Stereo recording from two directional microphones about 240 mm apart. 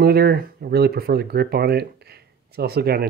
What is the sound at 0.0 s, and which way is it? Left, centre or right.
Speech, right.